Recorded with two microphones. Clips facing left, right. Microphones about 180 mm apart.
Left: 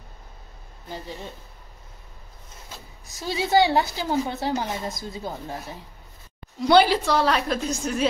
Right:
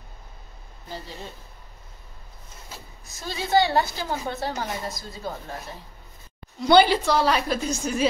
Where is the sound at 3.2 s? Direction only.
10° left (ahead or behind).